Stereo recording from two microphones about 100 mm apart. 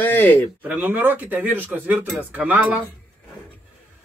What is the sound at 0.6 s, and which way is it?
Speech, 15° right (ahead or behind).